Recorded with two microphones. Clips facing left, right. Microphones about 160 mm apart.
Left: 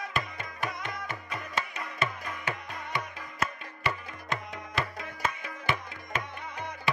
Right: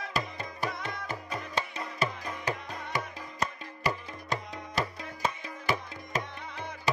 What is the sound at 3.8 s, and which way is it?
Tabla, 35° right (ahead or behind).